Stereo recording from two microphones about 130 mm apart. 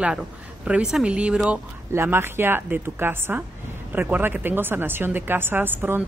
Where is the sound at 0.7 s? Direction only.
5° right (ahead or behind).